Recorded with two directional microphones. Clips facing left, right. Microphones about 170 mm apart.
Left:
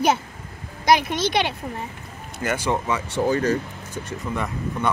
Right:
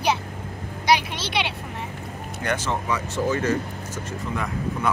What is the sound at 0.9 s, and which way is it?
Speech, 45° left (ahead or behind).